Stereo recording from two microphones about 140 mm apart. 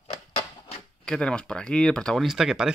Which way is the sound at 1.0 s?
5° left (ahead or behind).